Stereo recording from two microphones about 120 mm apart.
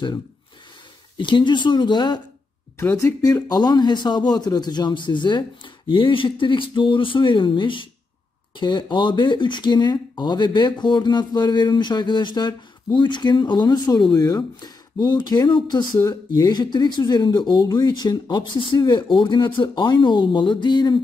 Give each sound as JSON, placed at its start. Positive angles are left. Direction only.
{"t": 1.1, "sound": "speech", "side_deg": 40}
{"t": 2.8, "sound": "speech", "side_deg": 25}